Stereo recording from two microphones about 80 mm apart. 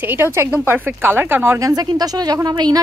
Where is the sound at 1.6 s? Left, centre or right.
Right.